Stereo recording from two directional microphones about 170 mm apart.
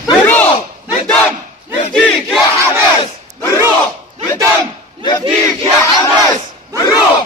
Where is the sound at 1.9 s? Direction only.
5° left (ahead or behind).